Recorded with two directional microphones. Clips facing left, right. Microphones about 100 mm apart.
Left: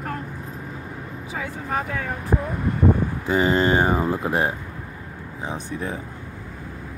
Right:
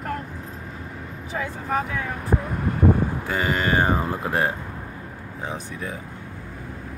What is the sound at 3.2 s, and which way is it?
Speech, 20° left (ahead or behind).